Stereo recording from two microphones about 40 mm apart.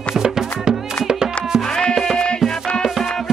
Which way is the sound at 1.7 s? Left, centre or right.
Left.